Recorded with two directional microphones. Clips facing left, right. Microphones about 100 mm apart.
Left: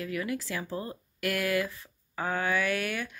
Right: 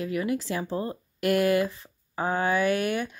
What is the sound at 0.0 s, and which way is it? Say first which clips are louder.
Speech: right 5 dB; 25° right (ahead or behind).